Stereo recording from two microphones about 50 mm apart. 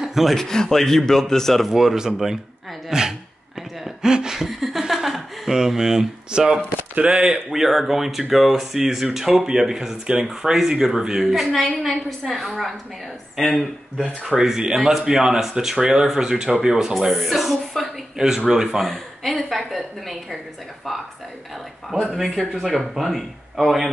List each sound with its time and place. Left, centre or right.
0.0 s a sound: centre
0.4 s speech: centre
1.7 s speech: centre
3.8 s a sound: centre
7.1 s speech: centre
7.5 s speech: centre
14.4 s speech: centre
17.1 s speech: centre
18.1 s speech: centre
22.1 s speech: centre